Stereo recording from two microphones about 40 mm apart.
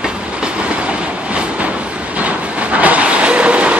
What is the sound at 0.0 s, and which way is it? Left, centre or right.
Train, right.